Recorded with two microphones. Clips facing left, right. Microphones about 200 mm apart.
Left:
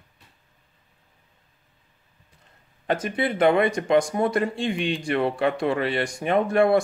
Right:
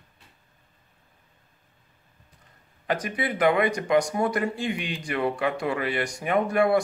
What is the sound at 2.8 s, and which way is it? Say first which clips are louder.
Speech: left 3 dB; 25° left (ahead or behind).